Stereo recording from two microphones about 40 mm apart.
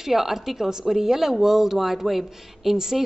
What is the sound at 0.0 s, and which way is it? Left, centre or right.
A woman's voice, centre.